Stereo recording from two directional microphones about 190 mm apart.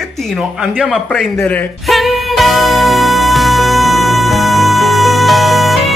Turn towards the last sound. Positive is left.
turn(degrees=0)  # may be behind; listen again after turning